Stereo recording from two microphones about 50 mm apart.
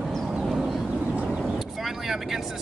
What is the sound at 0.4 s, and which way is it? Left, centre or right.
Vehicle, centre.